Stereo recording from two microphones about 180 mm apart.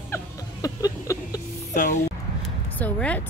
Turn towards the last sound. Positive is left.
turn(degrees=10)  # may be behind; listen again after turning